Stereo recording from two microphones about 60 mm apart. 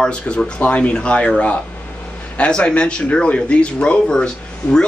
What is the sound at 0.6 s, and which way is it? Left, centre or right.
Speech, left.